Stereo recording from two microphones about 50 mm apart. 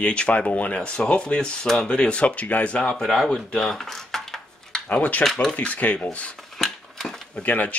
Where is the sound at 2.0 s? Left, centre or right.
Left.